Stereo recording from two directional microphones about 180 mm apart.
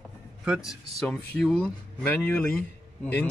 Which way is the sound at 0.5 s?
Centre (ahead or behind).